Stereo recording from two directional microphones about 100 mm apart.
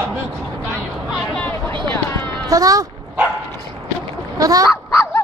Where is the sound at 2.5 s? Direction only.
35° right (ahead or behind).